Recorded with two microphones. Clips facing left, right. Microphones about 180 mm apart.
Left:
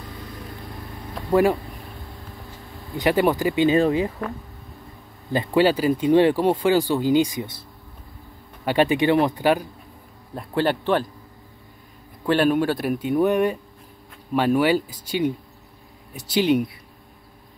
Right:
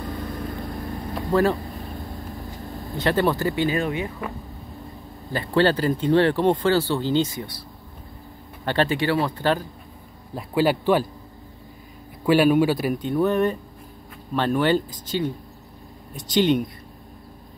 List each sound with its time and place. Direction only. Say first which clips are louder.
1.3 s speech: left 2 dB; 15° left (ahead or behind)
2.7 s a sound: left 1 dB; 40° right (ahead or behind)
3.0 s speech: left 2 dB; 15° left (ahead or behind)
3.7 s speech: left 6 dB; 30° left (ahead or behind)
5.3 s speech: left 2 dB; 15° left (ahead or behind)
8.6 s speech: left 3 dB; 15° left (ahead or behind)
10.3 s a man's voice: right 1 dB; 5° right (ahead or behind)
12.3 s speech: right 2 dB; 5° right (ahead or behind)